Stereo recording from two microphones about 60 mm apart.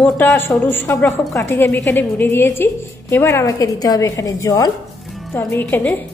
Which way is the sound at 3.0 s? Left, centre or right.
Left.